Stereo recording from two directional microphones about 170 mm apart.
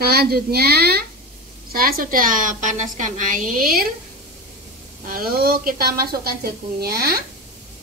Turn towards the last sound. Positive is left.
turn(degrees=-65)  # may be behind; listen again after turning